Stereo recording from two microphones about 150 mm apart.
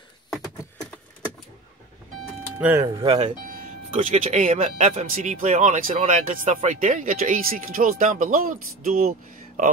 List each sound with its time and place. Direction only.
0.3 s a sound: 5° left (ahead or behind)
2.6 s speech: 20° right (ahead or behind)
3.1 s speech: 40° right (ahead or behind)
3.4 s music: 65° right (ahead or behind)
3.9 s speech: 50° right (ahead or behind)